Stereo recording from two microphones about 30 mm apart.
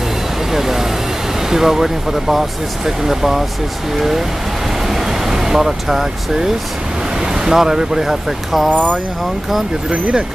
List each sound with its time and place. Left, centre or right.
0.5 s vehicle: centre
1.5 s speech: centre
4.8 s speech: centre